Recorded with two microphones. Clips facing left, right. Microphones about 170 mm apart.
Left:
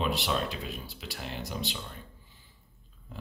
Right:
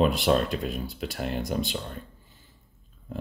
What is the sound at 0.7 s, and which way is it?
Speech, 45° right (ahead or behind).